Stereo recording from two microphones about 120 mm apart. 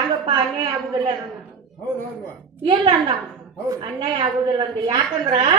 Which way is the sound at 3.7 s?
40° right (ahead or behind).